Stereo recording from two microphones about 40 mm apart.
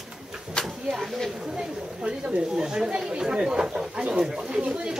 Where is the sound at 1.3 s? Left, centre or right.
Centre.